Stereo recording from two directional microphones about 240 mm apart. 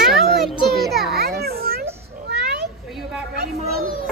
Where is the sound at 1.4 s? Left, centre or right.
Right.